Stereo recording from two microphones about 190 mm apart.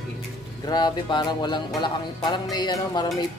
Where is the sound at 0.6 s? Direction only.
20° left (ahead or behind).